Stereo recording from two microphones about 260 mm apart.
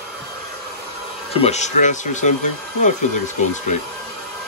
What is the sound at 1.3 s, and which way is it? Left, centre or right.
Speech, left.